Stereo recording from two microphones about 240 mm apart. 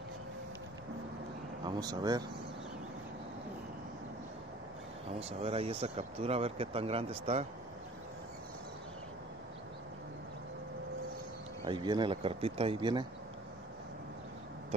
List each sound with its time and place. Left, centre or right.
1.6 s speech: centre
5.4 s speech: right
11.6 s speech: centre